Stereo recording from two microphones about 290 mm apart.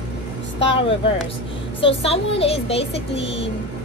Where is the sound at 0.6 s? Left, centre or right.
Centre.